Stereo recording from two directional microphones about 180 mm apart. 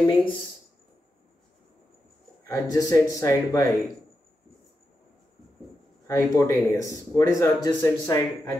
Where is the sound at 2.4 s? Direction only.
20° left (ahead or behind).